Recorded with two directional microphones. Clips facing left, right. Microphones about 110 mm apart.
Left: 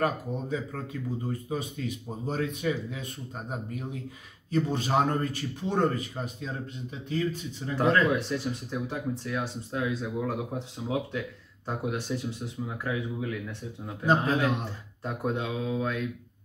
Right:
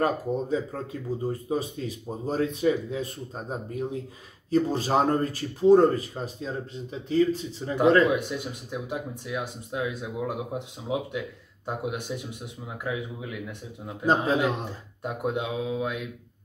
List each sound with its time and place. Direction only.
0.0 s speech: 30° right (ahead or behind)
8.2 s speech: 15° right (ahead or behind)
14.0 s a man's voice: 25° right (ahead or behind)
15.0 s speech: 15° right (ahead or behind)